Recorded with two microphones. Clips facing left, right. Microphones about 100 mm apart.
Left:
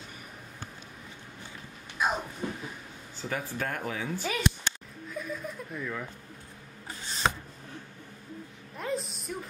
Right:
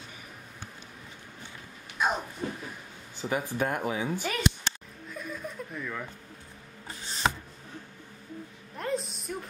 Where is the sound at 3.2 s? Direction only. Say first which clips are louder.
Right 4 dB; 15° right (ahead or behind).